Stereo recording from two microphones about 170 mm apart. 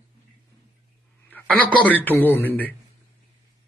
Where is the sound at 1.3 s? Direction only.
10° left (ahead or behind).